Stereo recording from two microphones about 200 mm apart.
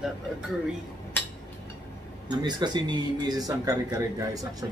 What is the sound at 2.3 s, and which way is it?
Speech, 20° right (ahead or behind).